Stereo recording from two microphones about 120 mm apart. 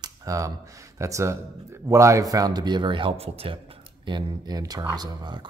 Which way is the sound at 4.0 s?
35° right (ahead or behind).